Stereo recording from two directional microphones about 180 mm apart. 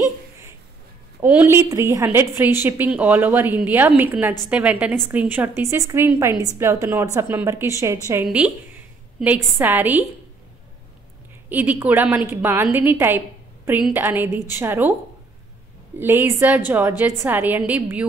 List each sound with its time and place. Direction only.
1.2 s a woman's voice: 10° right (ahead or behind)
11.4 s a woman's voice: 10° right (ahead or behind)
16.0 s a woman's voice: 15° right (ahead or behind)